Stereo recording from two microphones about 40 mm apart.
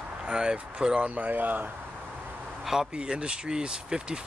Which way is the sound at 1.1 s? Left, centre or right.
Right.